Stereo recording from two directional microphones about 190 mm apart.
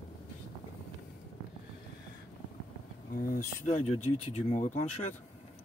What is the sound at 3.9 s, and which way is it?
Speech, 35° left (ahead or behind).